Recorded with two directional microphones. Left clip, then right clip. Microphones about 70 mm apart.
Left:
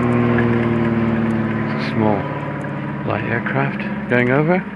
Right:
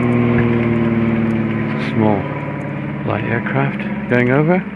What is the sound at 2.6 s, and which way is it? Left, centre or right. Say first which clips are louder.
Vehicle: right 1 dB; centre.